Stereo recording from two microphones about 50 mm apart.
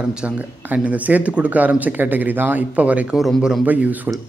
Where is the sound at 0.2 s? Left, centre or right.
Centre.